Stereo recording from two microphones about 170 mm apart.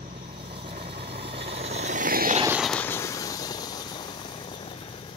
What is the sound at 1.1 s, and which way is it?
Vehicle, 35° right (ahead or behind).